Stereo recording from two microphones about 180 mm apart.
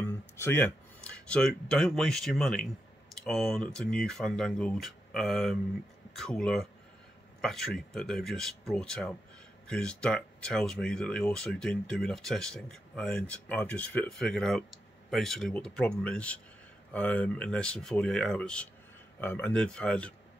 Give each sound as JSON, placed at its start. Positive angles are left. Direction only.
{"t": 0.0, "sound": "speech", "side_deg": 10}